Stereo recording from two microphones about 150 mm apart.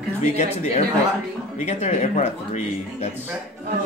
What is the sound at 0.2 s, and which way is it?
Speech, 50° left (ahead or behind).